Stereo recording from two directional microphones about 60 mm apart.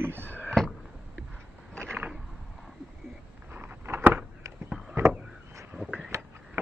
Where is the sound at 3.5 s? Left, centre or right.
Right.